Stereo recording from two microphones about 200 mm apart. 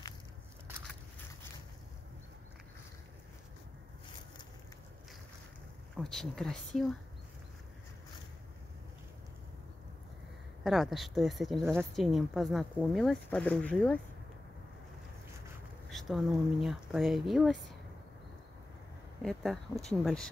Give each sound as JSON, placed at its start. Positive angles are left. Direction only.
{"t": 5.9, "sound": "speech", "side_deg": 0}
{"t": 10.6, "sound": "speech", "side_deg": 0}
{"t": 15.9, "sound": "speech", "side_deg": 0}
{"t": 19.2, "sound": "speech", "side_deg": 0}